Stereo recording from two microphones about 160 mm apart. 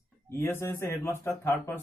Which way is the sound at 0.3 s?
15° left (ahead or behind).